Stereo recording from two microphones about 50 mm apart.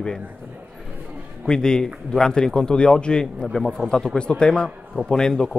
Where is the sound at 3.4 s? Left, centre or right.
Centre.